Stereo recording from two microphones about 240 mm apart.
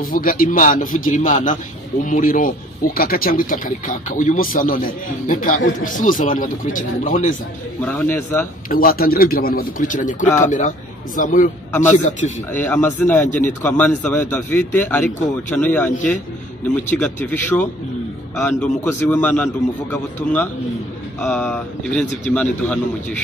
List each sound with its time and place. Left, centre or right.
0.0 s speech: left
7.8 s a man's voice: centre
8.6 s speech: left
12.5 s a man's voice: centre
16.9 s a man's voice: centre